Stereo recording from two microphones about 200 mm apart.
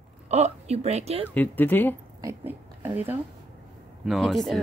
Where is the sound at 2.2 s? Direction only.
10° right (ahead or behind).